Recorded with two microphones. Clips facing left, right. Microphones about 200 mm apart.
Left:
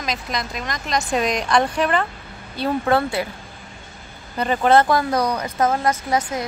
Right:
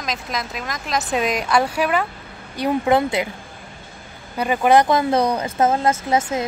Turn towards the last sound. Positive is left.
turn(degrees=-25)  # may be behind; listen again after turning